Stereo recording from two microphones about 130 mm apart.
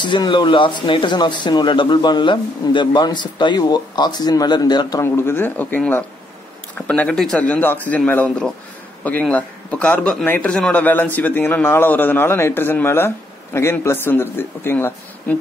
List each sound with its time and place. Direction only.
0.0 s speech: 35° left (ahead or behind)
5.0 s a man's voice: 20° left (ahead or behind)